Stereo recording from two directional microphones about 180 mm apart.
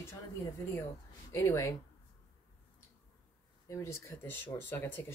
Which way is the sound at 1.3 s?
15° left (ahead or behind).